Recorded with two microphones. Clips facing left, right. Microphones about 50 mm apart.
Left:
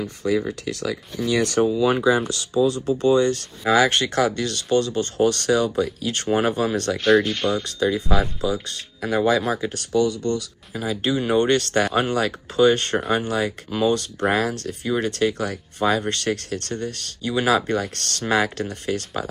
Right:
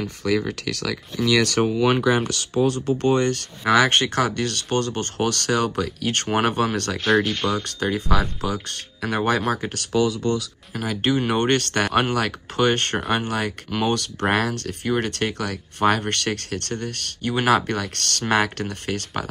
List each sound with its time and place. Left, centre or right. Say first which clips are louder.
0.5 s speech: even; right
1.6 s speech: left 1 dB; right
7.1 s speech: left 2 dB; centre
7.6 s speech: left 2 dB; right
9.9 s speech: left 1 dB; right
10.7 s speech: right 1 dB; right